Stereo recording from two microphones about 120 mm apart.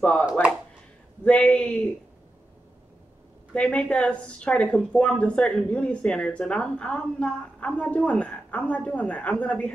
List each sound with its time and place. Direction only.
0.0 s a woman's voice: 10° left (ahead or behind)
3.5 s a woman's voice: 10° left (ahead or behind)